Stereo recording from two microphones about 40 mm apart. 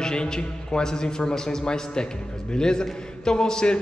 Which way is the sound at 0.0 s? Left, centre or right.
Centre.